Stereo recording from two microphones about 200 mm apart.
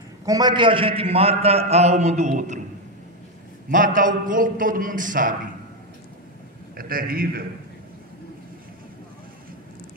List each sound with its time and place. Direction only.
0.2 s a man's voice: 20° right (ahead or behind); by 2.6 s 35° right (ahead or behind)
3.7 s a man's voice: 40° right (ahead or behind)
6.8 s a man's voice: 45° right (ahead or behind)